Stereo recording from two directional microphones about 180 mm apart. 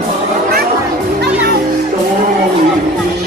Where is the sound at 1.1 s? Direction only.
60° right (ahead or behind).